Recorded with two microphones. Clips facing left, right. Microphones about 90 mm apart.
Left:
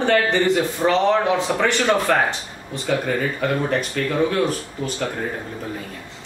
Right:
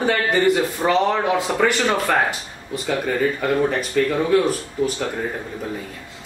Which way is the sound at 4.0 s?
5° right (ahead or behind).